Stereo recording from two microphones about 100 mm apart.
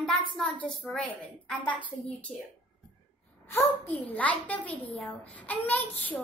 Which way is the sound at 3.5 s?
20° left (ahead or behind).